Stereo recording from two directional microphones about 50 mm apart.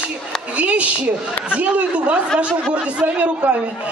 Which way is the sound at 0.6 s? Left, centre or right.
Right.